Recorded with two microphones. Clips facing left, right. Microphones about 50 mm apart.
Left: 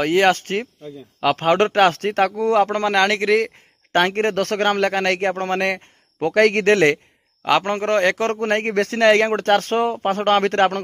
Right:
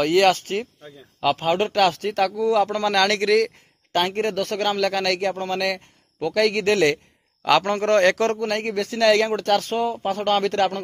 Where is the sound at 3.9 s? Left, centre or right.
Left.